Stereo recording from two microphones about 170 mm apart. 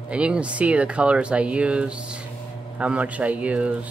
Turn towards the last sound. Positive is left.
turn(degrees=-10)  # may be behind; listen again after turning